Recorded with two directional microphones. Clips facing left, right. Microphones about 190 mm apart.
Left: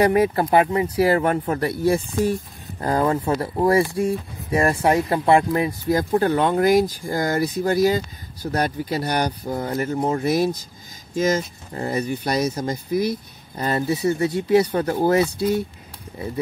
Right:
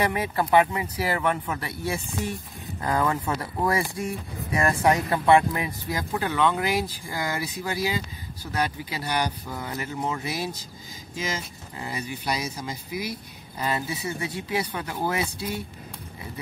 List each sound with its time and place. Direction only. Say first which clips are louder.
0.0 s speech: left 8 dB; 40° left (ahead or behind)